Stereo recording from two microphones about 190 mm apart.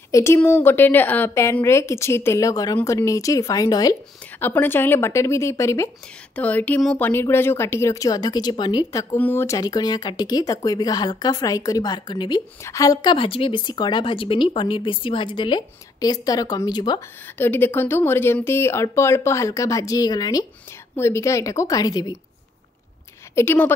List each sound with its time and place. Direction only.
0.1 s a woman's voice: 15° left (ahead or behind)
9.1 s speech: 10° left (ahead or behind)
17.4 s a woman's voice: 10° left (ahead or behind)
23.3 s a woman's voice: 10° left (ahead or behind)